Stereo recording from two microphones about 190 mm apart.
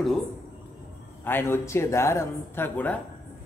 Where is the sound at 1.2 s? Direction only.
10° left (ahead or behind).